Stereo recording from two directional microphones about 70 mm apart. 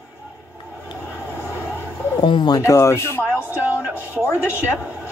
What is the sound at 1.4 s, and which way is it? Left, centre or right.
Vehicle, left.